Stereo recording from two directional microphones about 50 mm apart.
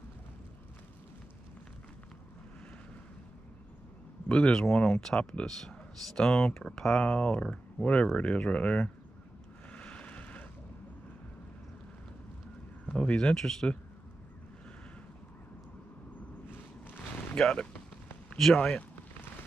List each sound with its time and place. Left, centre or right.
4.3 s speech: centre
9.7 s a sound: left
12.8 s speech: left
17.4 s speech: left